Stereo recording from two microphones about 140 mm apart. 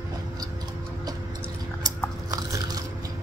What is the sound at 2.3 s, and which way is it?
Biting, 25° right (ahead or behind).